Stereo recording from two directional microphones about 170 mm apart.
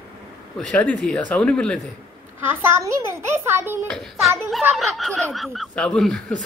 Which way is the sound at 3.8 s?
5° left (ahead or behind).